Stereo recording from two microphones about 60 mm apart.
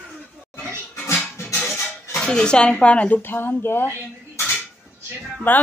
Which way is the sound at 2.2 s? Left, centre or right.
Centre.